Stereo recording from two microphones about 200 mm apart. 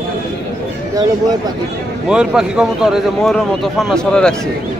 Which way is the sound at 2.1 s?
5° right (ahead or behind).